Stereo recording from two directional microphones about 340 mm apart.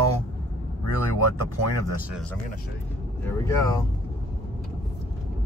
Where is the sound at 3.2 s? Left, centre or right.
Centre.